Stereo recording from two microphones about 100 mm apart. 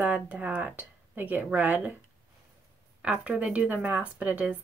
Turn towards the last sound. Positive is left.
turn(degrees=-15)  # may be behind; listen again after turning